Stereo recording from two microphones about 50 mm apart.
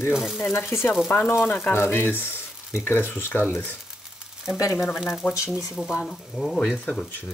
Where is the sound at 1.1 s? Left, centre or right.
Left.